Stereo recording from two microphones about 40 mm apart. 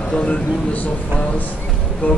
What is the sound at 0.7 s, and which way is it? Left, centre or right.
Speech, left.